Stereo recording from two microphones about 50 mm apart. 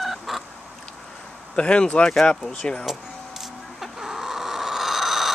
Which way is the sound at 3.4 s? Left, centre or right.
Centre.